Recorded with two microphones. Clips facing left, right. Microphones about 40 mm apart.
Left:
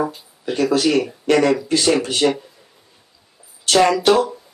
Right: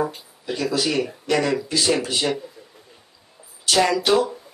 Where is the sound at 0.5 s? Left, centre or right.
Left.